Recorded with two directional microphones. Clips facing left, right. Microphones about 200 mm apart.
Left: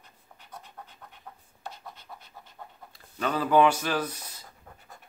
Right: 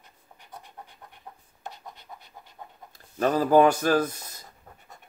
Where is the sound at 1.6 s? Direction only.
20° right (ahead or behind).